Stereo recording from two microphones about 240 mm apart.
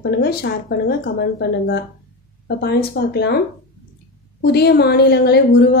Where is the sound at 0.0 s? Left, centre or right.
Left.